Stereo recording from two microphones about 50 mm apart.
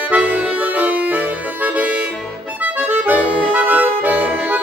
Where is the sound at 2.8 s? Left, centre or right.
Right.